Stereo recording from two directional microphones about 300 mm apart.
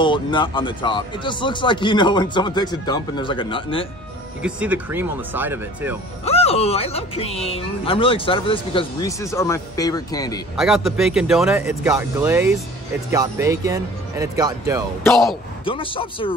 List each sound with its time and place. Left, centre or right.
0.0 s speech: centre
4.4 s speech: centre
6.2 s speech: centre
10.5 s speech: centre
15.0 s speech: centre
15.6 s speech: centre